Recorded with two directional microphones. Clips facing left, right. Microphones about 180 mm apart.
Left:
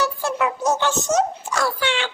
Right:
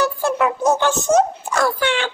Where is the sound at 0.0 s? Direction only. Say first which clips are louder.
Right 4 dB; 55° right (ahead or behind).